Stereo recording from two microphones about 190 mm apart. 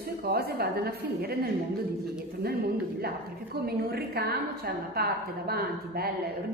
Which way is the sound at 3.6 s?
55° right (ahead or behind).